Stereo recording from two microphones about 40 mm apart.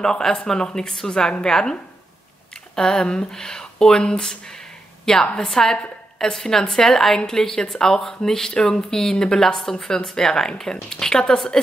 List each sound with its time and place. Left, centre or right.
0.0 s a woman's voice: centre